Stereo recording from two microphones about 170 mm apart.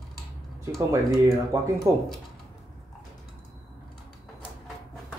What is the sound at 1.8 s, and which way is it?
Speech, 15° right (ahead or behind).